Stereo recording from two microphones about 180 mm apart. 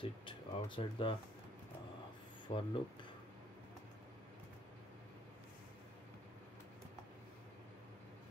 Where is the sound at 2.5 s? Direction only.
35° left (ahead or behind).